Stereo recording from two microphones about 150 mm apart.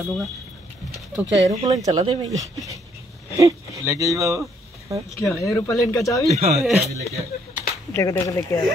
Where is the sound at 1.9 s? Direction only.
35° right (ahead or behind).